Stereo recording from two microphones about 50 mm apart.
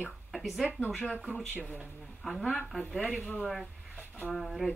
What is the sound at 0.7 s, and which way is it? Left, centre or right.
Speech, right.